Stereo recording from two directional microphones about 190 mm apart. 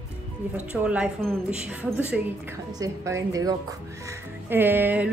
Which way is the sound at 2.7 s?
15° right (ahead or behind).